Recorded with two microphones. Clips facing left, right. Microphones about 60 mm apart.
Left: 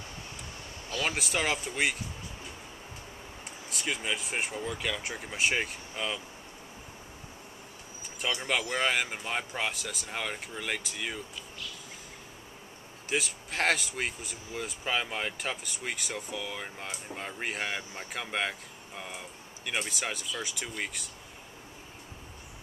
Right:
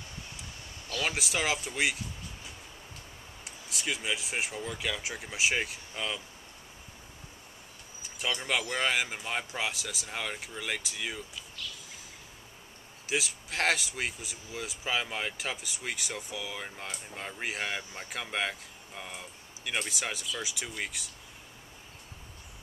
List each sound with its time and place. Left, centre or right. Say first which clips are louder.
0.8 s speech: left 1 dB; centre
3.4 s speech: even; centre
8.2 s speech: left 1 dB; centre
13.1 s speech: left 1 dB; centre